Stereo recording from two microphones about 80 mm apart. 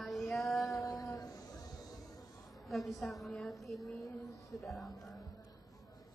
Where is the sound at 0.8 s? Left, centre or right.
Left.